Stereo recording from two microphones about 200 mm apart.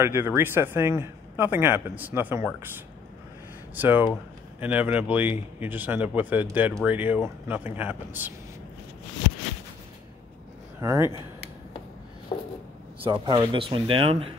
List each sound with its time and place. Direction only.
0.0 s a man's voice: 10° right (ahead or behind)
3.7 s a man's voice: 10° right (ahead or behind)
10.8 s speech: 15° right (ahead or behind)
13.0 s speech: 25° right (ahead or behind)